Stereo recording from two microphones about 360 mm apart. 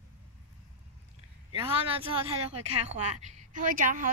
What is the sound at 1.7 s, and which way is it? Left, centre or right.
Speech, centre.